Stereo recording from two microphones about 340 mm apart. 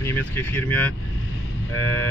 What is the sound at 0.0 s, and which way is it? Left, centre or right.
Speech, centre.